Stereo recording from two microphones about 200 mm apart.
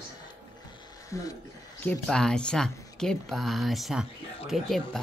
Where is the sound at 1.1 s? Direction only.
15° left (ahead or behind); by 5.0 s centre (ahead or behind).